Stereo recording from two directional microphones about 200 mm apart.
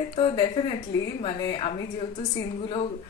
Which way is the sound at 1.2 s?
30° left (ahead or behind).